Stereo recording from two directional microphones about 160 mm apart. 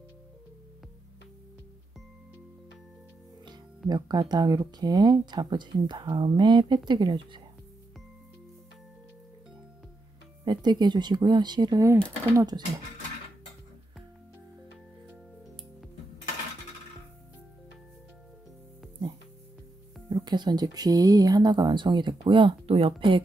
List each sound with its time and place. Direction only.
3.9 s speech: 25° right (ahead or behind)
10.4 s speech: 25° right (ahead or behind)
20.1 s speech: 25° right (ahead or behind)